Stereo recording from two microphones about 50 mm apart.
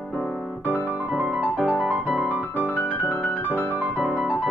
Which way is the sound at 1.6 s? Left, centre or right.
Right.